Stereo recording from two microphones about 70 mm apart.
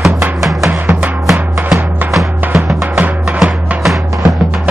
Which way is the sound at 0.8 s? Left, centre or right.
Right.